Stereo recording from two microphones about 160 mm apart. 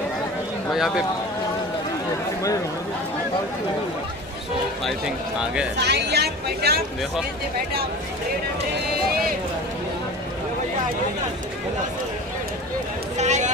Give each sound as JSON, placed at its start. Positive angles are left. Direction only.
{"t": 0.7, "sound": "speech", "side_deg": -5}
{"t": 4.8, "sound": "speech", "side_deg": -5}
{"t": 5.8, "sound": "speech", "side_deg": -90}
{"t": 13.2, "sound": "speech", "side_deg": -45}